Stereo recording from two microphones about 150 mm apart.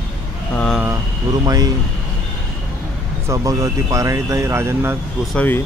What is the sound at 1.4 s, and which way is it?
Speech, 25° right (ahead or behind).